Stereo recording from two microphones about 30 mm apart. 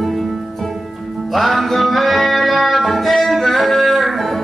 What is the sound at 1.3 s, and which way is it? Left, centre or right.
Music, centre.